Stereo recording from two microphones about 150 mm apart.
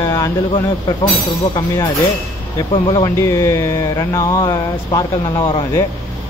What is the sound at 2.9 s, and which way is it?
Speech, 20° left (ahead or behind).